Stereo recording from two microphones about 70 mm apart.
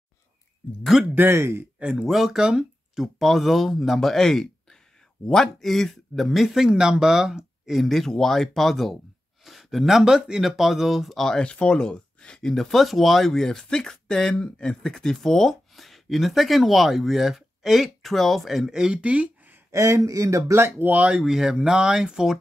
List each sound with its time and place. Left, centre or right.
1.1 s speech: right
1.8 s speech: centre
19.7 s speech: right
20.9 s speech: centre